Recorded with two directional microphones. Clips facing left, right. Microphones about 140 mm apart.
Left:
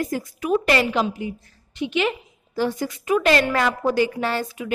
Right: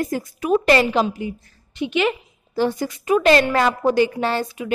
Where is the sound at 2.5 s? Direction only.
25° right (ahead or behind).